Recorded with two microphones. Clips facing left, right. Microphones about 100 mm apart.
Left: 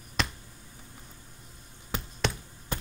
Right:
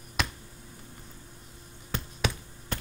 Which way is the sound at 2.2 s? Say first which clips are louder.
Even; 5° right (ahead or behind).